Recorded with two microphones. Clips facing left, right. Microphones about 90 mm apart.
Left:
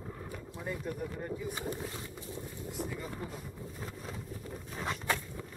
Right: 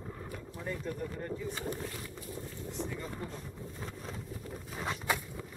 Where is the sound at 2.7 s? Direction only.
5° left (ahead or behind).